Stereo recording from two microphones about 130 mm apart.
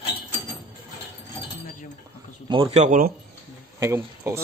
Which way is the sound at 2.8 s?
80° right.